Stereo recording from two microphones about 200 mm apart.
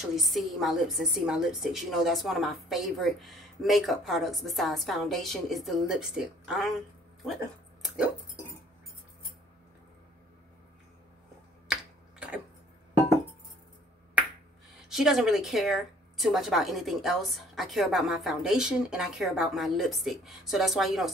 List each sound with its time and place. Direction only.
0.0 s a woman's voice: centre (ahead or behind)
7.8 s music: 5° right (ahead or behind)
11.6 s finger snapping: 5° right (ahead or behind)
14.9 s a woman's voice: centre (ahead or behind)